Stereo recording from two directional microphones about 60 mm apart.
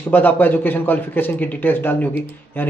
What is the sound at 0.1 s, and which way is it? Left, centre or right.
A man's voice, left.